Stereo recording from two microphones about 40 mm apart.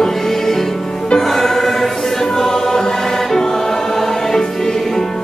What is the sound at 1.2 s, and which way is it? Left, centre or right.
Music, centre.